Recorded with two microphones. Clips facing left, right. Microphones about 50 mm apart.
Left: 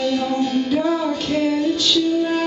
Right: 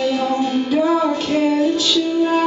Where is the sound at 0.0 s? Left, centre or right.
Centre.